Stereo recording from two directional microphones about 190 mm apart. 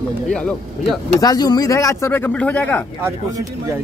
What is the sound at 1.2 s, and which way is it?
Speech, 20° left (ahead or behind).